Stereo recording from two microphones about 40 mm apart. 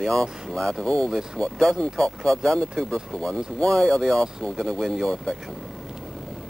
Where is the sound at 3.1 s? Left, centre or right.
Left.